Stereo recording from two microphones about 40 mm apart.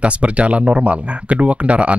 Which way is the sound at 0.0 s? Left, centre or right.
Right.